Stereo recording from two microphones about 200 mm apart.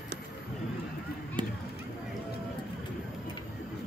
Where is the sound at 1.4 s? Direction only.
25° right (ahead or behind).